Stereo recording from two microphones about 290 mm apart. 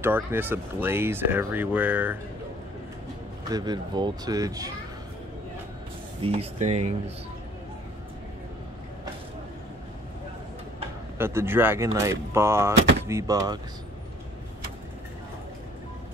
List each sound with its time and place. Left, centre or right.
0.0 s speech: centre
3.4 s speech: centre
6.2 s speech: centre
11.1 s speech: centre